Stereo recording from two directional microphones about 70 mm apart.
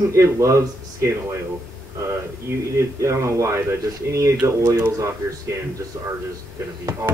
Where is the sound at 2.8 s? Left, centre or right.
Right.